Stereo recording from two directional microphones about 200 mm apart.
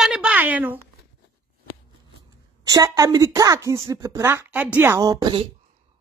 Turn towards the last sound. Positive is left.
turn(degrees=-20)  # may be behind; listen again after turning